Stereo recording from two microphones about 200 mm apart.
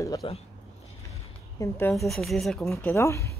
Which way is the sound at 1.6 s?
10° left (ahead or behind).